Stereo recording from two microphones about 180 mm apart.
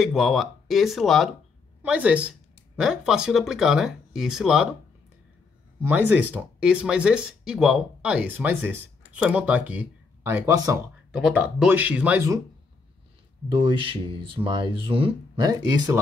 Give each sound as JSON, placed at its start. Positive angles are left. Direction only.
{"t": 0.0, "sound": "speech", "side_deg": 0}
{"t": 5.8, "sound": "speech", "side_deg": -10}
{"t": 11.1, "sound": "speech", "side_deg": -5}
{"t": 13.5, "sound": "speech", "side_deg": -30}